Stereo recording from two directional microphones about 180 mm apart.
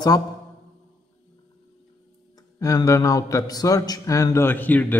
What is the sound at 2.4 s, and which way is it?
A man's voice, 20° left (ahead or behind).